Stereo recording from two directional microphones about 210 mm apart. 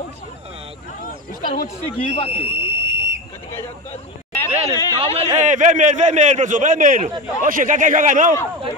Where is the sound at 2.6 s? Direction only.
55° right (ahead or behind).